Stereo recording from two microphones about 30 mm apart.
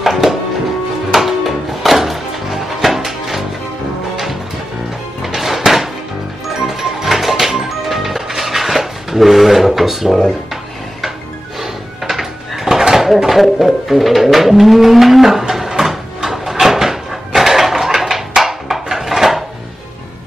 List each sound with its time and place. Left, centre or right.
0.0 s music: centre
5.2 s music: centre
7.1 s music: centre
11.6 s drawer open or close: centre
13.3 s a sound: centre
13.8 s bird: centre
15.8 s cupboard open or close: centre